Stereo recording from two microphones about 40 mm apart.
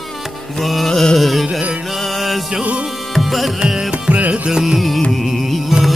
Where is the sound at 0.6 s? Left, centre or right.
Centre.